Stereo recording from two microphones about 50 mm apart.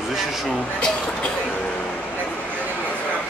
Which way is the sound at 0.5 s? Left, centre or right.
Left.